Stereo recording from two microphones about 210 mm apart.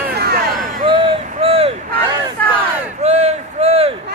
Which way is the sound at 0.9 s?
25° right (ahead or behind).